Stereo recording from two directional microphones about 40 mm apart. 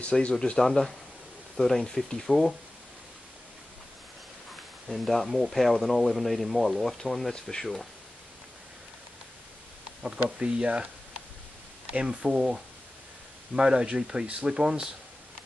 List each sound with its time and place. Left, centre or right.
0.2 s speech: left
0.7 s speech: centre
4.8 s speech: centre
10.0 s speech: right
11.9 s speech: right
12.2 s speech: centre